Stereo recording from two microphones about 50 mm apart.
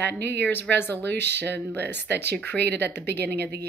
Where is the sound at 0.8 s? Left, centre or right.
Left.